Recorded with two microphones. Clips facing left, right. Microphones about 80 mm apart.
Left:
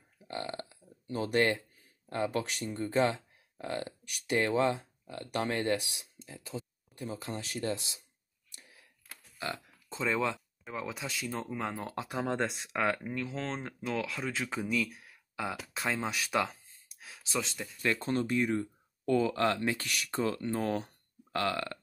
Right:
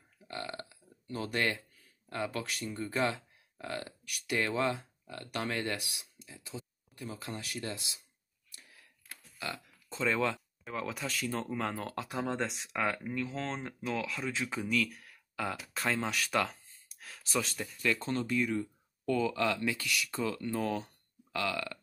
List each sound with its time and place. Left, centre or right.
0.3 s burping: left
1.0 s speech: left
6.2 s speech: left
7.2 s speech: left
8.5 s a sound: left
9.9 s speech: centre
12.2 s speech: centre
17.0 s a sound: centre
17.8 s speech: left